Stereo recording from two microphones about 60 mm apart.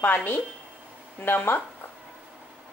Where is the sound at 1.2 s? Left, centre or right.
Left.